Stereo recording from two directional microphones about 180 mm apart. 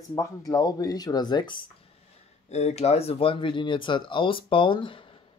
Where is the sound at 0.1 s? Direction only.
20° left (ahead or behind).